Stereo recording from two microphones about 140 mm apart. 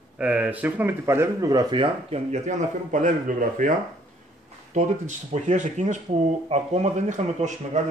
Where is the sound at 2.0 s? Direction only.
50° right (ahead or behind); by 3.7 s 70° right (ahead or behind).